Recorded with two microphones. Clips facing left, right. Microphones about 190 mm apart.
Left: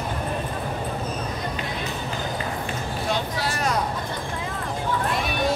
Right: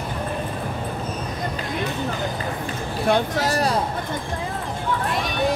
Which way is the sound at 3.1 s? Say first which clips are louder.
Right 8 dB; 40° right (ahead or behind).